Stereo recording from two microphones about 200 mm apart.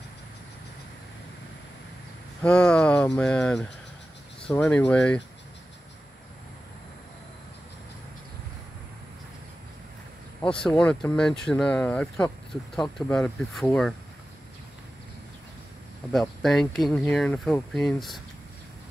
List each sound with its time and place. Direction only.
2.4 s speech: 5° left (ahead or behind)
10.4 s speech: 5° left (ahead or behind)
16.1 s speech: centre (ahead or behind)